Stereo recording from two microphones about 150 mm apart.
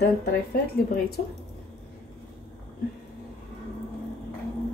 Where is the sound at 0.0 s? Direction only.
90° left.